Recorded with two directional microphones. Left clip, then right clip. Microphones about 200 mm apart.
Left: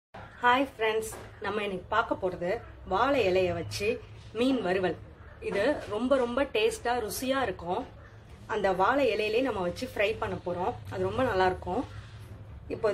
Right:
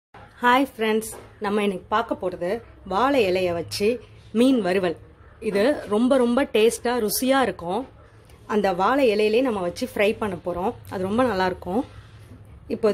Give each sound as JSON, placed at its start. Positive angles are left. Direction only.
{"t": 0.4, "sound": "a woman's voice", "side_deg": -50}